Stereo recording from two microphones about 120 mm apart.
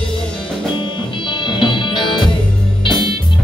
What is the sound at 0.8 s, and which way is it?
Music, 40° left (ahead or behind).